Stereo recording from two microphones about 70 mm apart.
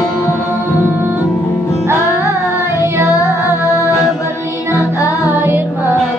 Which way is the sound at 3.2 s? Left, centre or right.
Left.